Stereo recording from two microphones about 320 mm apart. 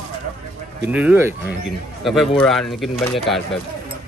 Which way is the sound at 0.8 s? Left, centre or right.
Centre.